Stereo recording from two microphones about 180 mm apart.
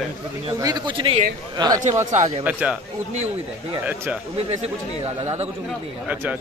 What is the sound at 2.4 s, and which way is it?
Speech, 10° right (ahead or behind).